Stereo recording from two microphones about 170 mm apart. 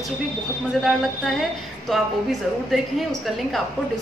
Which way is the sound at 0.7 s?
Centre (ahead or behind).